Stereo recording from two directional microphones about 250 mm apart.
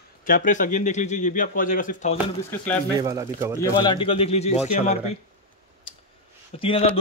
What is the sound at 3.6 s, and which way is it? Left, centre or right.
Speech, centre.